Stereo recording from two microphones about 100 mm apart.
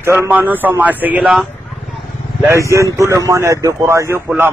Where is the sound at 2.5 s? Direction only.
30° right (ahead or behind).